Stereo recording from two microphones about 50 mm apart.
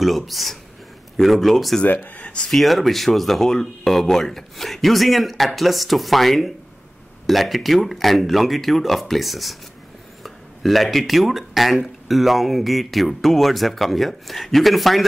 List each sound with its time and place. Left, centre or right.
0.0 s speech: centre
1.9 s speech: left
2.5 s speech: centre